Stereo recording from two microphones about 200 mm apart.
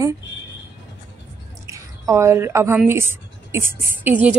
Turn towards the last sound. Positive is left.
turn(degrees=-10)  # may be behind; listen again after turning